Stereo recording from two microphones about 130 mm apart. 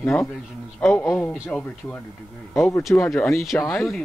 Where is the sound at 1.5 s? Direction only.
10° left (ahead or behind).